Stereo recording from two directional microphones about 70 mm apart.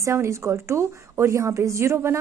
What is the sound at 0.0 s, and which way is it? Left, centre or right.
A woman's voice, right.